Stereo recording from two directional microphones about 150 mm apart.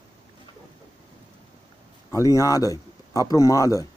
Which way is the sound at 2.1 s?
20° left (ahead or behind).